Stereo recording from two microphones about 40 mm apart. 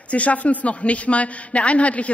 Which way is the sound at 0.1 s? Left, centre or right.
Left.